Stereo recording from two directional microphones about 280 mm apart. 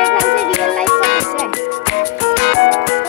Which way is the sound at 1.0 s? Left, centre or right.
Left.